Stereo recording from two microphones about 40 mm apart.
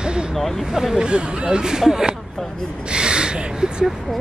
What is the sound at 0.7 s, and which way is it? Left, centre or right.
Speech, centre.